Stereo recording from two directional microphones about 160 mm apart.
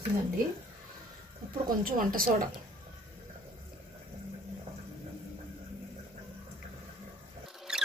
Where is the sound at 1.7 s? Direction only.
60° right (ahead or behind).